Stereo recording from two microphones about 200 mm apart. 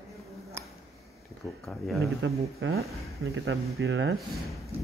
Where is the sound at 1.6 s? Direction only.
Centre (ahead or behind).